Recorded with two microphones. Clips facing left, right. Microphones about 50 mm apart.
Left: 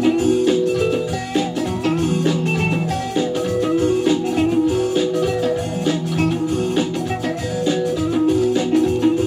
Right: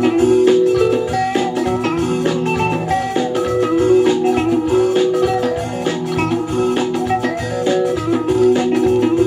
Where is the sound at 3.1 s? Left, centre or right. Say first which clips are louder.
Right 3 dB; right.